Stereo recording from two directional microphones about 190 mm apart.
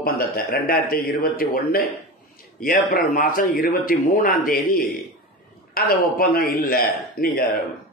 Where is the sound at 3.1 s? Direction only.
45° left (ahead or behind).